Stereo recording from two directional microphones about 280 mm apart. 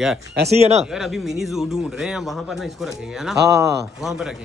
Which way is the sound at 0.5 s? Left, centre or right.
Right.